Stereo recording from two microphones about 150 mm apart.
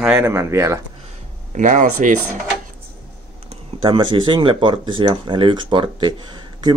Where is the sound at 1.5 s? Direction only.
55° right (ahead or behind).